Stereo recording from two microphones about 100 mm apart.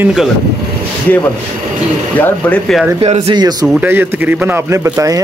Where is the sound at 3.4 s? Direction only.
45° right (ahead or behind).